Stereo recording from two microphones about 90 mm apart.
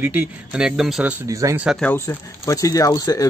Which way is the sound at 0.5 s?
5° right (ahead or behind).